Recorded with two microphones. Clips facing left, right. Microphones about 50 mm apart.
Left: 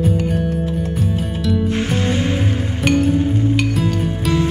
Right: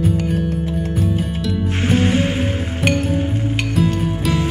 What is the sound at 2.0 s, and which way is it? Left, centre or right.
Music, right.